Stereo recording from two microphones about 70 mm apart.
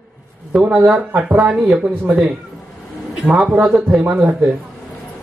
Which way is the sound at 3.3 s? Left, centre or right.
Right.